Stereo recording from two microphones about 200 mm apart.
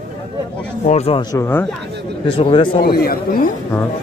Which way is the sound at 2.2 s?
25° left (ahead or behind).